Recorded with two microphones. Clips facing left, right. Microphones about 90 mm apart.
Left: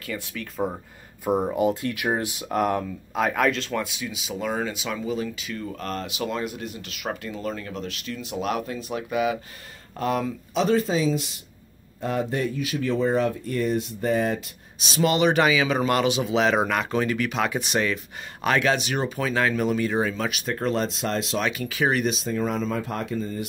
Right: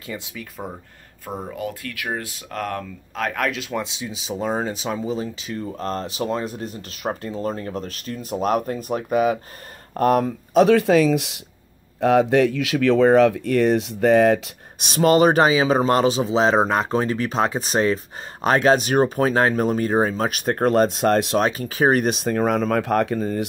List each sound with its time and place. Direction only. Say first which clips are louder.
0.0 s speech: even; 20° right (ahead or behind)
0.6 s speech: left 8 dB; 5° left (ahead or behind); by 3.8 s 10° right (ahead or behind)
3.8 s speech: right 1 dB; 25° right (ahead or behind); by 11.4 s 90° right
12.0 s speech: right 10 dB; 80° right; by 21.4 s 55° right (ahead or behind)
21.4 s speech: right 5 dB; 35° right (ahead or behind)
22.1 s speech: right 6 dB; 60° right (ahead or behind)